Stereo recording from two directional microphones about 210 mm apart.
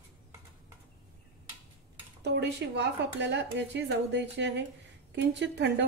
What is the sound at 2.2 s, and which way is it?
A woman's voice, 55° right (ahead or behind).